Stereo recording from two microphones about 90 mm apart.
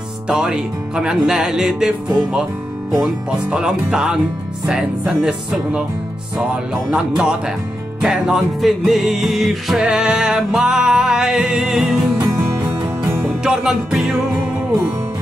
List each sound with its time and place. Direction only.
0.3 s speech: 5° right (ahead or behind)
2.9 s music: centre (ahead or behind)
3.4 s speech: 10° right (ahead or behind)
8.0 s music: 5° right (ahead or behind)
12.2 s music: 40° right (ahead or behind)
13.3 s speech: 10° right (ahead or behind)